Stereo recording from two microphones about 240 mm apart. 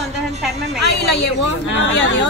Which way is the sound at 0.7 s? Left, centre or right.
Left.